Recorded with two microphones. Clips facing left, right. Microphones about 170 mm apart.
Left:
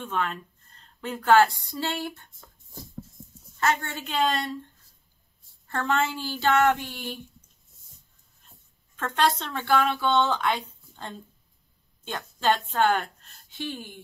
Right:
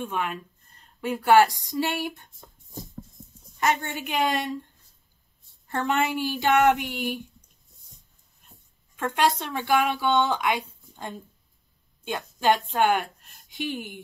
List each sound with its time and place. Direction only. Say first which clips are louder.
0.0 s speech: even; 10° right (ahead or behind)
5.7 s speech: right 1 dB; 15° right (ahead or behind)
8.9 s a woman's voice: right 1 dB; 10° right (ahead or behind)